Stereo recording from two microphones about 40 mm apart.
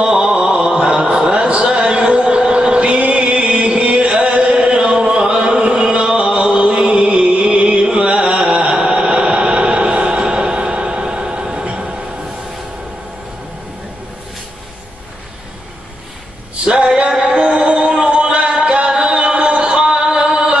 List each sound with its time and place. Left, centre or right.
0.0 s a sound: right
5.9 s music: centre
6.1 s chant: right
16.6 s music: right